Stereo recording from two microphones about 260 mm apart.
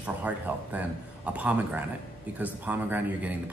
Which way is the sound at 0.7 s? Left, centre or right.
Centre.